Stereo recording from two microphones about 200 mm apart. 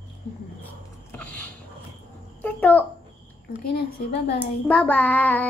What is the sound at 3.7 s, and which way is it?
Speech, 55° left (ahead or behind).